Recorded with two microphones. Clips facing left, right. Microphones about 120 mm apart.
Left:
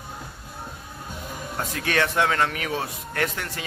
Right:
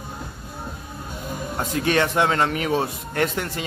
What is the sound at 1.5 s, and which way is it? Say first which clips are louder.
Speech: right 4 dB; 25° right (ahead or behind).